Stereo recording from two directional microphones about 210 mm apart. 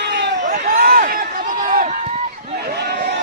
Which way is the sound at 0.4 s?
35° right (ahead or behind).